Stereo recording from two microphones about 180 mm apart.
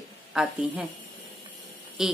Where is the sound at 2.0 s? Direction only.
5° right (ahead or behind).